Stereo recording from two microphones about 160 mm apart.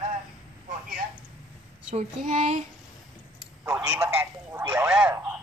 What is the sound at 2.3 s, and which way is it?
Speech, 45° right (ahead or behind).